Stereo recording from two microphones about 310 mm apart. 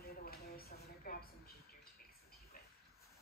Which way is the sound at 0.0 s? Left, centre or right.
Left.